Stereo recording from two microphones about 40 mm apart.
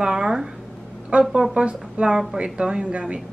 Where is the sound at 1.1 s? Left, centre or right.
Right.